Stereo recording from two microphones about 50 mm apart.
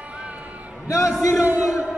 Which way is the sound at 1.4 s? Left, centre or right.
Right.